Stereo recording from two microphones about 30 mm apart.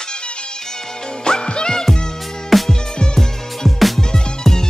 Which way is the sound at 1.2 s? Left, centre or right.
Left.